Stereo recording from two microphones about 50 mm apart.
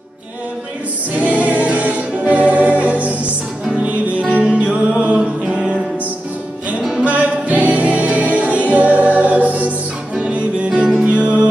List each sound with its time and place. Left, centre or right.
1.1 s music: right
7.0 s music: right
11.1 s music: right